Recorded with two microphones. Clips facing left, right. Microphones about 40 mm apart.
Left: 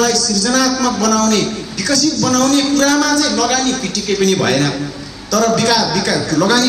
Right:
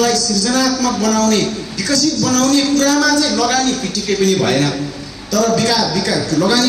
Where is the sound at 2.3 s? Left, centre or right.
Left.